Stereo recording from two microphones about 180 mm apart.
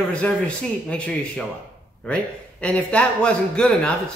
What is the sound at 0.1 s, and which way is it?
A man's voice, 5° left (ahead or behind).